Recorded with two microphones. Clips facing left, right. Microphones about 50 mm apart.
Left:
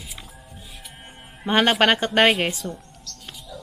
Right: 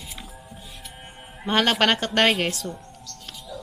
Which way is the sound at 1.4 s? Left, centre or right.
Centre.